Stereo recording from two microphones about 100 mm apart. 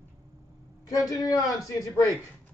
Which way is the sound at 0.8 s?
35° left (ahead or behind).